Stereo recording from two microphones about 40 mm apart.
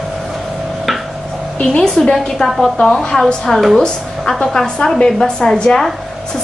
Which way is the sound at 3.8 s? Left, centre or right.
Centre.